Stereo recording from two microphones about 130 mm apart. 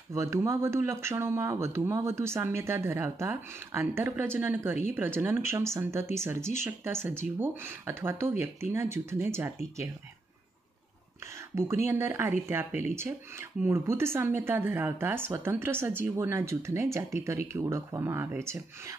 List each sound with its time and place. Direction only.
0.1 s speech: 20° right (ahead or behind)
11.5 s speech: 20° right (ahead or behind)